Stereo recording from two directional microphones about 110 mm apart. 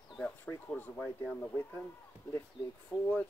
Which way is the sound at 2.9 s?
10° right (ahead or behind).